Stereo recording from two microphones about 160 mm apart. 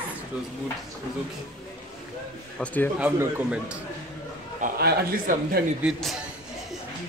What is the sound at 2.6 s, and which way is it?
Speech, 10° left (ahead or behind).